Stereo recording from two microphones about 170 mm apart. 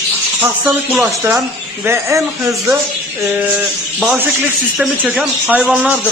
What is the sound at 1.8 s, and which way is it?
Speech, 15° right (ahead or behind).